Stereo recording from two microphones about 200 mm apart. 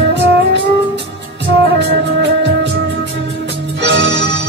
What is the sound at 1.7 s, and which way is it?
Music, 60° right (ahead or behind).